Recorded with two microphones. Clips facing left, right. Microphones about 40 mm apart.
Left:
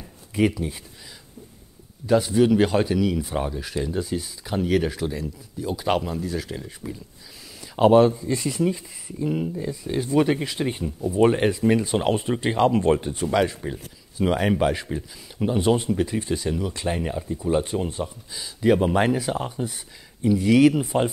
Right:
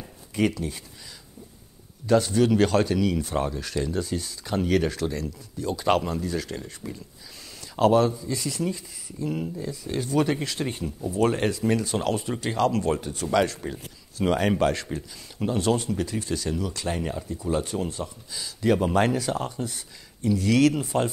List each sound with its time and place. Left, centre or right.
0.4 s speech: centre
2.0 s speech: centre
7.7 s speech: left
13.4 s speech: centre